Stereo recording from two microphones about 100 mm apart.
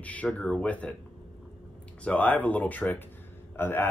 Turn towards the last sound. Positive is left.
turn(degrees=20)  # may be behind; listen again after turning